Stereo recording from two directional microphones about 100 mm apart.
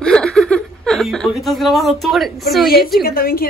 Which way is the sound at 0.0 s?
10° left (ahead or behind).